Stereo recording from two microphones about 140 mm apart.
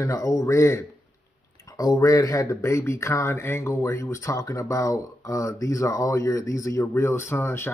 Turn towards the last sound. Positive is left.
turn(degrees=15)  # may be behind; listen again after turning